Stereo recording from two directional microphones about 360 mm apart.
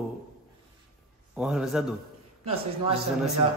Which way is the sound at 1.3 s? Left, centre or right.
Centre.